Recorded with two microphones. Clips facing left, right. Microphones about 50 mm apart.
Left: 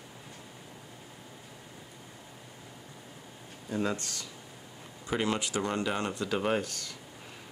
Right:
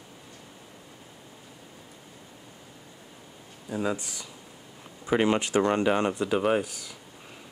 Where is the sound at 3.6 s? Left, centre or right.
Centre.